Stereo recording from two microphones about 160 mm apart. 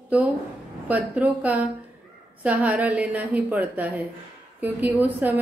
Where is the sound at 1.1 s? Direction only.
10° right (ahead or behind).